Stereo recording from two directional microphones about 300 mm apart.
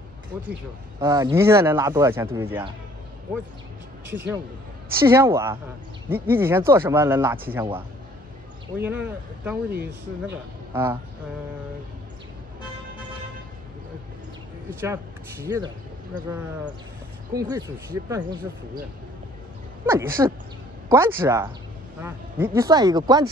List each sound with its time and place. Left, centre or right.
0.4 s speech: centre
5.0 s a man's voice: centre
14.7 s speech: centre
17.4 s speech: centre
19.9 s speech: centre